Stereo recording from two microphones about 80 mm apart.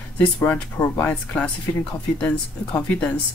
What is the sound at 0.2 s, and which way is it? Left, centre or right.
Speech, left.